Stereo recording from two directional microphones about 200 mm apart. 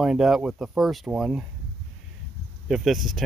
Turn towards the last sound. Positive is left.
turn(degrees=0)  # may be behind; listen again after turning